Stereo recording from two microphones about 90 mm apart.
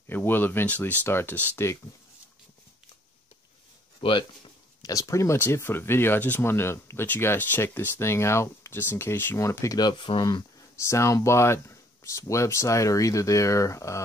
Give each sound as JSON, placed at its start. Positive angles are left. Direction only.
{"t": 0.0, "sound": "speech", "side_deg": 25}
{"t": 4.0, "sound": "speech", "side_deg": 80}
{"t": 4.8, "sound": "speech", "side_deg": 40}
{"t": 9.8, "sound": "speech", "side_deg": 65}
{"t": 10.8, "sound": "speech", "side_deg": 30}